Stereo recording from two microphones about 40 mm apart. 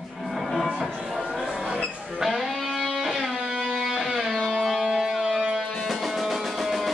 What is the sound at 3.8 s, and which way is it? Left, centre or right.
Music, centre.